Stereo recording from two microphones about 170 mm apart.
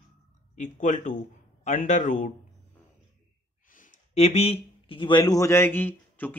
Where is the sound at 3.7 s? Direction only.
40° left (ahead or behind); by 6.3 s 10° left (ahead or behind).